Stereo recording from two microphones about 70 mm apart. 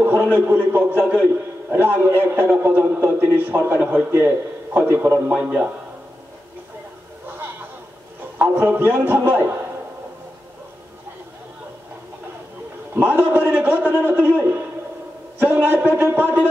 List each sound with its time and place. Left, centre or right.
0.0 s a man's voice: right
5.3 s a man's voice: right
7.2 s a sound: right
8.4 s a man's voice: right
12.9 s a man's voice: right